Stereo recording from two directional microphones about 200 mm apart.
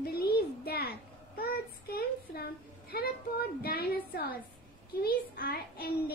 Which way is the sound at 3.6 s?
50° left (ahead or behind).